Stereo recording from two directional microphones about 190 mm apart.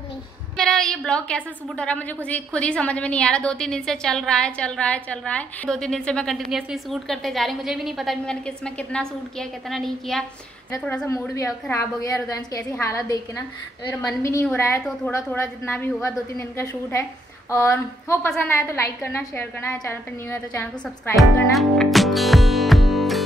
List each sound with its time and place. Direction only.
0.6 s a woman's voice: 5° left (ahead or behind)
10.9 s a woman's voice: 15° left (ahead or behind)
21.5 s music: centre (ahead or behind)